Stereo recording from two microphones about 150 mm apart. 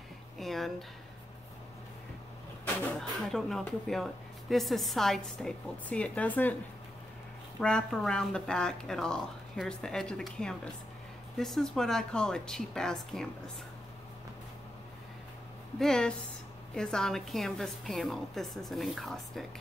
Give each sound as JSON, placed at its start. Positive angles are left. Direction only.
{"t": 0.4, "sound": "a sound", "side_deg": 0}
{"t": 2.6, "sound": "speech", "side_deg": 5}
{"t": 7.6, "sound": "speech", "side_deg": 5}
{"t": 15.8, "sound": "speech", "side_deg": 5}